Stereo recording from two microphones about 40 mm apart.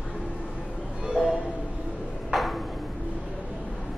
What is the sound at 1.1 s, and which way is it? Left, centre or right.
Music, right.